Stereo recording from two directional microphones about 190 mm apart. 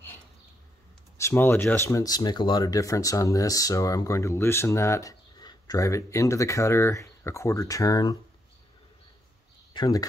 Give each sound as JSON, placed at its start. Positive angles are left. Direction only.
{"t": 1.1, "sound": "speech", "side_deg": 15}
{"t": 9.8, "sound": "speech", "side_deg": 20}